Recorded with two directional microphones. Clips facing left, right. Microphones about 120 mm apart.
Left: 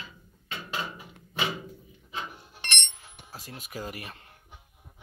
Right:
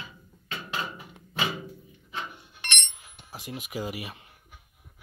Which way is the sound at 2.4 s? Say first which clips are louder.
Even; 35° left (ahead or behind).